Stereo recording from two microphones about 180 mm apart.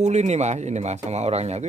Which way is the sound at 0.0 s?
40° right (ahead or behind).